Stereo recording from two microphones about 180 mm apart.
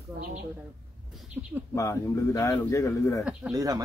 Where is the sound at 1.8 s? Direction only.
15° left (ahead or behind).